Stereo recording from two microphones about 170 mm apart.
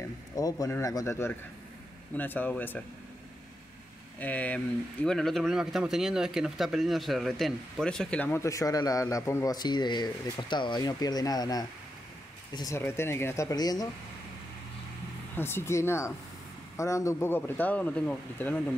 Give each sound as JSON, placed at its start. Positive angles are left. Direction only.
{"t": 0.4, "sound": "speech", "side_deg": 20}
{"t": 4.2, "sound": "speech", "side_deg": 10}
{"t": 15.3, "sound": "speech", "side_deg": 15}